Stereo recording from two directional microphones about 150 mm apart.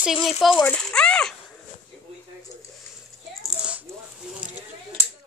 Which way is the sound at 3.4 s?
5° right (ahead or behind).